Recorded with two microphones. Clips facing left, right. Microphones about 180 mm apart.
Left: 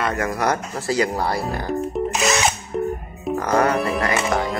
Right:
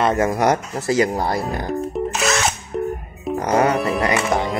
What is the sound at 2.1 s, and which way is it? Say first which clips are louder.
Music: even; 10° left (ahead or behind).